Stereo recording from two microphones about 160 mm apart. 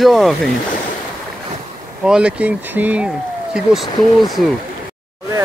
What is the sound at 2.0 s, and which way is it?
Speech, 5° right (ahead or behind).